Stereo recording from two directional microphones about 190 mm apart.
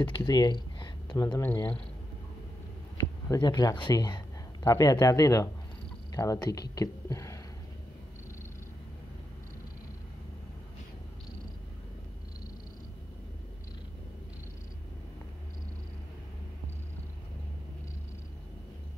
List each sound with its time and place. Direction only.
0.1 s speech: 20° left (ahead or behind)
3.0 s speech: 20° left (ahead or behind)